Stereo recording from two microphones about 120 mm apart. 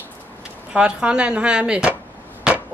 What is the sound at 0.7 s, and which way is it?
Speech, 10° right (ahead or behind).